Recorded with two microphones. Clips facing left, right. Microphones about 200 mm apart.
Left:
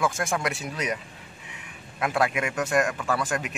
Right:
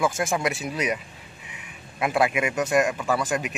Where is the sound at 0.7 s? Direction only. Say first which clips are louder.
Right 3 dB; 15° right (ahead or behind).